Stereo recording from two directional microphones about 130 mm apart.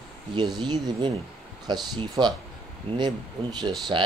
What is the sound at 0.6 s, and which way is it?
A man's voice, 35° right (ahead or behind).